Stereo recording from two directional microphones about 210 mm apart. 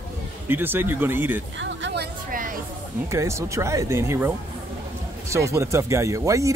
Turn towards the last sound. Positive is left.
turn(degrees=-15)  # may be behind; listen again after turning